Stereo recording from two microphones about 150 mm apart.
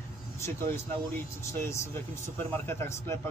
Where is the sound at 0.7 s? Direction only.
15° left (ahead or behind).